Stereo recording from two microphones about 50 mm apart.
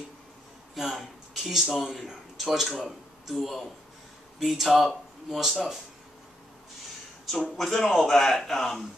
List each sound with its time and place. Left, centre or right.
0.7 s speech: centre
7.5 s a man's voice: centre